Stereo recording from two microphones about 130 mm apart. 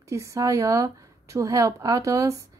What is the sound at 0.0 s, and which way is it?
A woman's voice, 25° right (ahead or behind).